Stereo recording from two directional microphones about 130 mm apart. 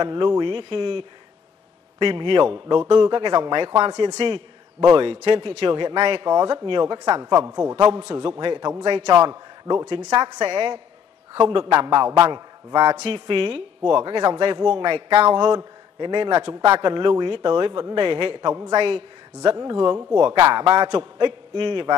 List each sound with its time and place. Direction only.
0.0 s a man's voice: 35° right (ahead or behind)
13.1 s a man's voice: 40° right (ahead or behind)
19.4 s a man's voice: 30° right (ahead or behind)